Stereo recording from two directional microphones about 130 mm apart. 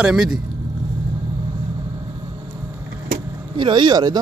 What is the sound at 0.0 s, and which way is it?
Speech, 5° right (ahead or behind).